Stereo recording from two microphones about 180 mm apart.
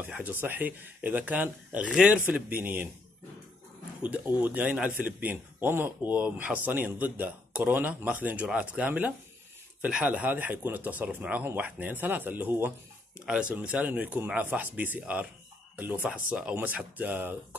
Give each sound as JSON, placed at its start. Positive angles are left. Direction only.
{"t": 0.0, "sound": "a man's voice", "side_deg": -10}
{"t": 4.0, "sound": "a man's voice", "side_deg": -10}